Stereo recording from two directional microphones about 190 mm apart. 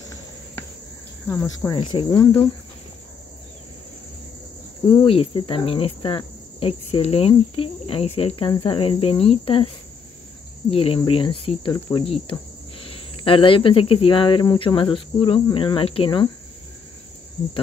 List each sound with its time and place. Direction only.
1.2 s cricket: 10° left (ahead or behind)
1.8 s cricket: 25° left (ahead or behind)
5.0 s cricket: 30° left (ahead or behind)
10.7 s cricket: 30° left (ahead or behind)